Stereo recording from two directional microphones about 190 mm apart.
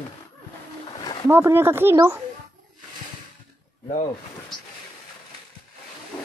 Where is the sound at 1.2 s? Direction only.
15° right (ahead or behind).